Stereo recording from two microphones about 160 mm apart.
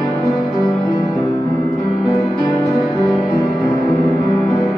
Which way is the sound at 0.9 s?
25° left (ahead or behind).